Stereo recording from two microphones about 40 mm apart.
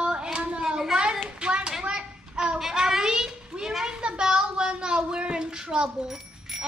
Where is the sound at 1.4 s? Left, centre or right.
Right.